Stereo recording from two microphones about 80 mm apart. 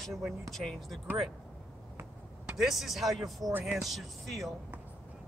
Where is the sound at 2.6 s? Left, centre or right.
Centre.